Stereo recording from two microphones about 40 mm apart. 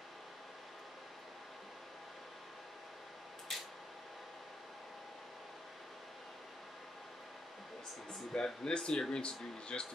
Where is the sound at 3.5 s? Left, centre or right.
Centre.